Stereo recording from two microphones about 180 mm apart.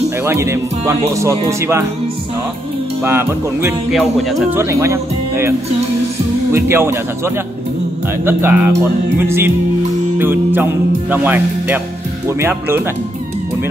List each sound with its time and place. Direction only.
0.2 s music: 15° right (ahead or behind)
3.0 s music: 15° right (ahead or behind)
3.9 s music: centre (ahead or behind)
4.6 s music: 15° right (ahead or behind)
6.5 s music: 15° right (ahead or behind)